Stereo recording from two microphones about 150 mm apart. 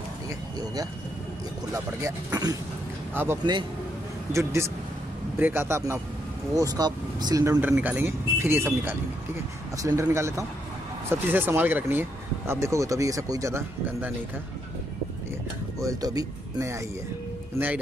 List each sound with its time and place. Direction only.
1.7 s speech: 20° right (ahead or behind)
7.6 s speech: 10° right (ahead or behind)
15.8 s speech: 25° right (ahead or behind)